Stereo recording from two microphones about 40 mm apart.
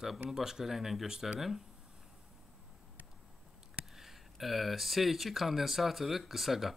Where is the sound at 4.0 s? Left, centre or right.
Centre.